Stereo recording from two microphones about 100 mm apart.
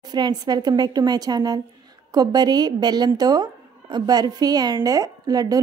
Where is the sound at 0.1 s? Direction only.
45° right (ahead or behind).